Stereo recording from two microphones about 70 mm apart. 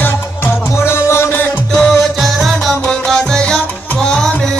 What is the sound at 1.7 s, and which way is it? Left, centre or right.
Music, centre.